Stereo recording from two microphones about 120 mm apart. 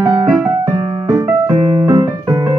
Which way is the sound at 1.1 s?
30° right (ahead or behind).